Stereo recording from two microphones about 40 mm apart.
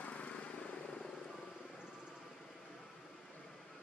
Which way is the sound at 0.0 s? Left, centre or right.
Left.